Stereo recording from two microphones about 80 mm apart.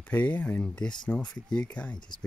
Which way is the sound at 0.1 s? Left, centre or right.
Centre.